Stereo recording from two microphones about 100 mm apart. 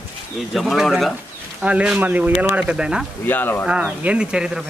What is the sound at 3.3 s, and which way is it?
Speech, 20° left (ahead or behind).